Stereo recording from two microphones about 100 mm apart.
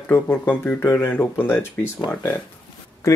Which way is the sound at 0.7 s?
25° left (ahead or behind).